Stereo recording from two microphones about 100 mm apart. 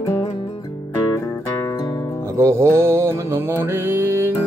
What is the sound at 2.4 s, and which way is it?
Music, 30° right (ahead or behind).